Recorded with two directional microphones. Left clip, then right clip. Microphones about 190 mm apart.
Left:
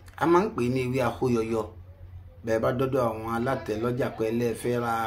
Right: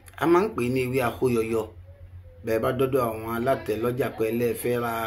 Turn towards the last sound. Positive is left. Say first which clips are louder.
# right 1 dB
turn(degrees=10)  # may be behind; listen again after turning